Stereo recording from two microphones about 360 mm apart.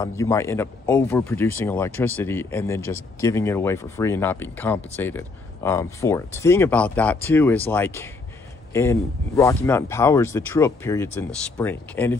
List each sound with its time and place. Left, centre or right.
0.0 s speech: centre